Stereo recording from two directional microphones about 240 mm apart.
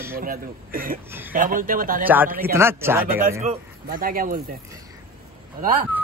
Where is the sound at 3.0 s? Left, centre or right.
Right.